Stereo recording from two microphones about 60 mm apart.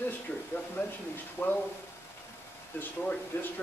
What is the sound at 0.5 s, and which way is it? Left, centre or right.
Speech, left.